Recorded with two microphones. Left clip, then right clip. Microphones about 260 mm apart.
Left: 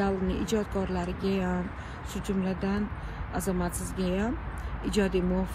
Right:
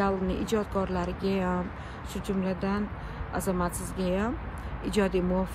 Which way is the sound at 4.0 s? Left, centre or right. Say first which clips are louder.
Right 1 dB; right.